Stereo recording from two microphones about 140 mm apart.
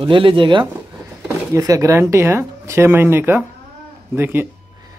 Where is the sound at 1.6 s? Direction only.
25° right (ahead or behind).